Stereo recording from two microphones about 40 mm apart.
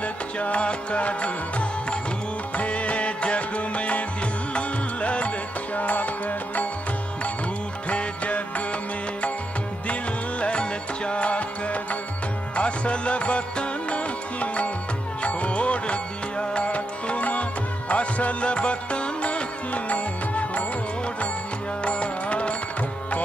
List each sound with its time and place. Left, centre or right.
0.0 s music: left
5.8 s music: left
7.9 s music: left
10.4 s music: left
21.8 s music: left